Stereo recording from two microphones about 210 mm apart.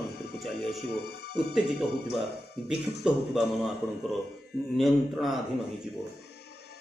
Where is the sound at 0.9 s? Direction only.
50° left (ahead or behind).